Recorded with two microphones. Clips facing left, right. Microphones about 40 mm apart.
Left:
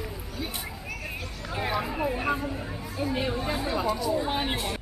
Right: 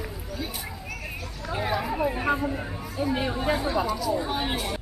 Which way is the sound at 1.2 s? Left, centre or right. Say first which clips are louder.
Right 2 dB; centre.